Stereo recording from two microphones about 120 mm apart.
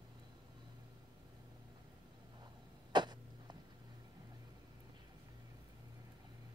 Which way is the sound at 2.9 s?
35° right (ahead or behind).